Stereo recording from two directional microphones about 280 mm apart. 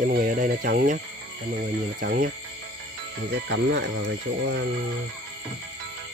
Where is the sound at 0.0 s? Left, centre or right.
Right.